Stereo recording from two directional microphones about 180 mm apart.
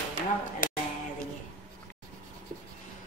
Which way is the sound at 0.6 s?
50° left (ahead or behind).